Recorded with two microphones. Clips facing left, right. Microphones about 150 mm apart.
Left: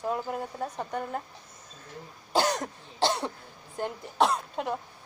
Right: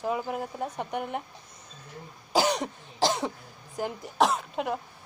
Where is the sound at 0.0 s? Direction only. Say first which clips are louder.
Right 1 dB; 5° right (ahead or behind).